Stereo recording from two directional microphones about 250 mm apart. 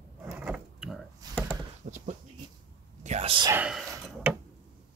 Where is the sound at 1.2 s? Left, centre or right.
Centre.